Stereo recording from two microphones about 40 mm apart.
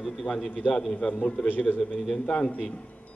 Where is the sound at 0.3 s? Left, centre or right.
Left.